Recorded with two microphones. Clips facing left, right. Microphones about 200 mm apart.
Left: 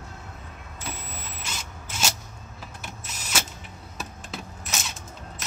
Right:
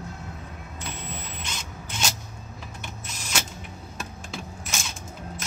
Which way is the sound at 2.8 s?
5° left (ahead or behind).